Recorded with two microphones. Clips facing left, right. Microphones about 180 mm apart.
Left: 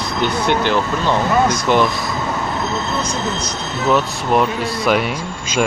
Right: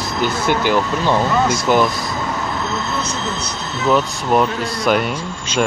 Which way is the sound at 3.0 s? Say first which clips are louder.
Left 2 dB; 15° left (ahead or behind).